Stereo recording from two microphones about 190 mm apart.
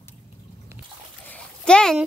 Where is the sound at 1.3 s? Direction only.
5° left (ahead or behind).